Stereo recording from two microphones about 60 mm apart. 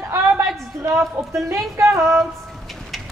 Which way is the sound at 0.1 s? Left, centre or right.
Right.